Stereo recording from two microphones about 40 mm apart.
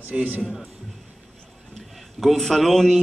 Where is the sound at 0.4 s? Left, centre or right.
Centre.